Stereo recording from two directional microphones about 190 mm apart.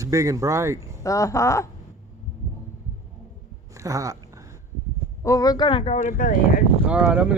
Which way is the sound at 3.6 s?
15° right (ahead or behind).